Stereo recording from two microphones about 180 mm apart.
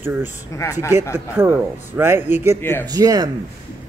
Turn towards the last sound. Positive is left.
turn(degrees=-20)  # may be behind; listen again after turning